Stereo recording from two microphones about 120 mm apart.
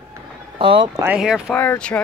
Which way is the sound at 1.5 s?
15° left (ahead or behind).